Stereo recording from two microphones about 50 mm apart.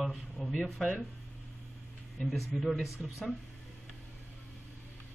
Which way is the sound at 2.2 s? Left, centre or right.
Centre.